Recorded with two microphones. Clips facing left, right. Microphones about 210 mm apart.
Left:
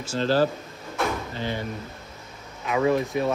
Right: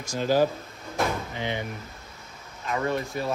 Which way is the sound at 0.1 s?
10° right (ahead or behind).